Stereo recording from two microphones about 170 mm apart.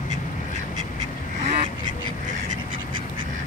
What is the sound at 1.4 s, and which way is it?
Goose, 40° right (ahead or behind).